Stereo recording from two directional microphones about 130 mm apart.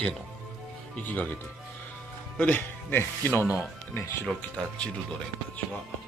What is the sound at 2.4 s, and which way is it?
Speech, 15° left (ahead or behind).